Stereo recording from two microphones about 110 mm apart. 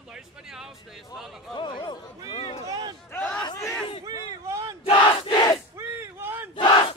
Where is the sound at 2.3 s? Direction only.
60° left (ahead or behind).